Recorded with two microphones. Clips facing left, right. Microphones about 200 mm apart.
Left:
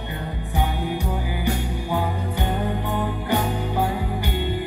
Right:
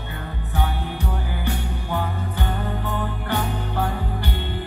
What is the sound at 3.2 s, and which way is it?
Music, 10° left (ahead or behind).